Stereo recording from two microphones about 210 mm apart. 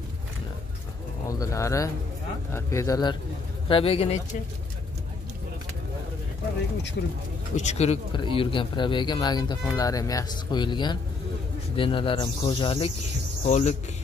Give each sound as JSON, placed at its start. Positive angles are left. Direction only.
{"t": 1.4, "sound": "speech", "side_deg": 15}
{"t": 7.5, "sound": "speech", "side_deg": 30}